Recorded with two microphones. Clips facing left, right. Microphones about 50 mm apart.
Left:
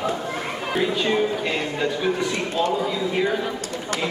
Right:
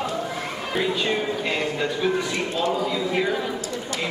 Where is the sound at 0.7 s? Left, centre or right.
Centre.